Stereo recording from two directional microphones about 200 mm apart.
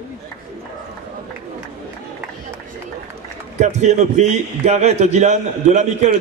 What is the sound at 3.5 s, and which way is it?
A man's voice, 35° right (ahead or behind).